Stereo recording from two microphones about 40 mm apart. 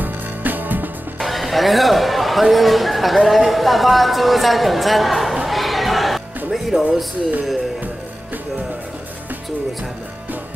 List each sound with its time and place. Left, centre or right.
0.0 s music: right
1.2 s speech: centre